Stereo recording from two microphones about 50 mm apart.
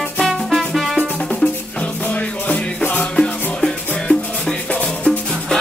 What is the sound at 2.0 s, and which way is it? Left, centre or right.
Music, left.